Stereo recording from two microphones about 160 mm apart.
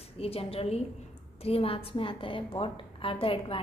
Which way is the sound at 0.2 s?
35° left (ahead or behind).